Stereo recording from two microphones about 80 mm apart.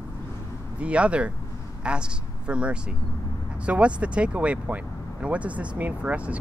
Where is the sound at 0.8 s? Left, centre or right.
Centre.